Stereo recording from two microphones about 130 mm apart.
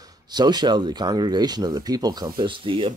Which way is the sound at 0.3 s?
35° right (ahead or behind).